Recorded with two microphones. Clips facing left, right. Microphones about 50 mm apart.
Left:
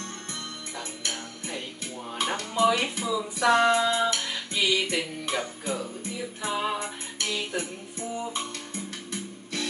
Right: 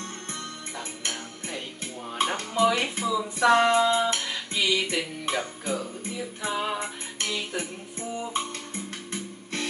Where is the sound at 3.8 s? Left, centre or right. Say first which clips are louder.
Right 2 dB; centre.